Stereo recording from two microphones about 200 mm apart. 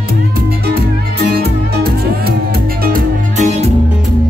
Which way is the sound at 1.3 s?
50° right (ahead or behind).